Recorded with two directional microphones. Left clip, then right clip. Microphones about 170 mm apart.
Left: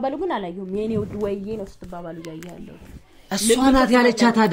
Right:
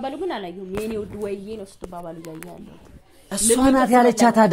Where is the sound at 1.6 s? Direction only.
40° right (ahead or behind).